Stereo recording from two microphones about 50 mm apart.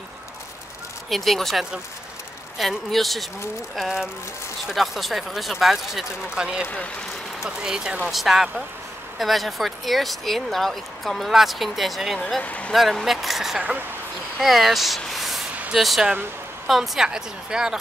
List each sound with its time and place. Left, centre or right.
1.1 s speech: centre
2.6 s speech: centre
3.8 s speech: centre
6.3 s speech: centre
12.4 s speech: left
13.0 s speech: centre
15.0 s a sound: centre
15.7 s speech: centre